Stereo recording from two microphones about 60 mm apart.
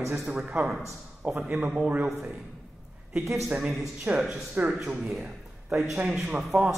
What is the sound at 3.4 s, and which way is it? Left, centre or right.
Speech, centre.